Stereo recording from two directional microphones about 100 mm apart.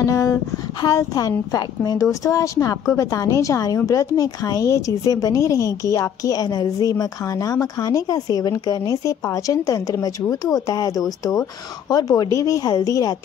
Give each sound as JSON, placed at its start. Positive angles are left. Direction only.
{"t": 0.0, "sound": "a woman's voice", "side_deg": 30}